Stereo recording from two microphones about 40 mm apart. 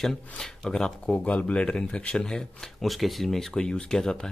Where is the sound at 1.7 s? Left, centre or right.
Left.